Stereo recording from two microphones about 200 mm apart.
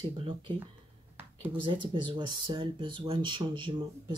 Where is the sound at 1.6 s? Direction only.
25° right (ahead or behind).